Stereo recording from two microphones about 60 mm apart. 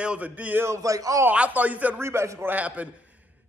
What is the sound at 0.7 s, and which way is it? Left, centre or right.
Speech, right.